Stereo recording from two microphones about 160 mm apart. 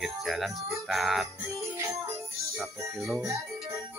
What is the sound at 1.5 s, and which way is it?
Music, 20° right (ahead or behind).